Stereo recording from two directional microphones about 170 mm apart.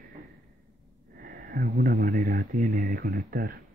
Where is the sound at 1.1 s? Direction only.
55° right (ahead or behind).